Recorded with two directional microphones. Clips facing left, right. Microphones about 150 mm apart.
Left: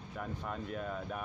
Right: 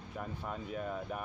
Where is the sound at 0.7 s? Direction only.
5° right (ahead or behind).